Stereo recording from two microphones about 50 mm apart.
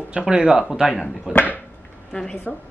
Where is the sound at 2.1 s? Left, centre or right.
Centre.